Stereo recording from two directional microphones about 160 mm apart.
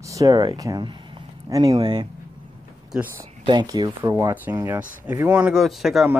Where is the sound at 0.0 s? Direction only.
20° right (ahead or behind).